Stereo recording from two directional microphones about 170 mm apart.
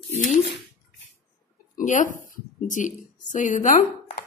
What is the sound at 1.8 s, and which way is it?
A woman's voice, 50° left (ahead or behind).